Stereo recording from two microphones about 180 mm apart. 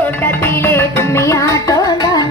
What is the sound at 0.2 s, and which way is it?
Music, 10° left (ahead or behind).